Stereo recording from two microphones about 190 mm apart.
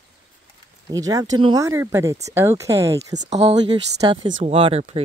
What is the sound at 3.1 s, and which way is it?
Speech, 40° right (ahead or behind).